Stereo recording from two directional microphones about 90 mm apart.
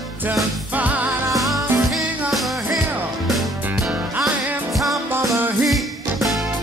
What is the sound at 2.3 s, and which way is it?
Music, centre (ahead or behind).